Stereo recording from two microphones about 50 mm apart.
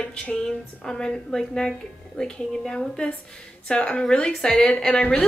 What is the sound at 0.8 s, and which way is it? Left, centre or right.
A woman's voice, centre.